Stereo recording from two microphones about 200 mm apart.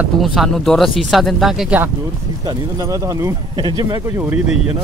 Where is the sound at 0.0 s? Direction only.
Centre (ahead or behind).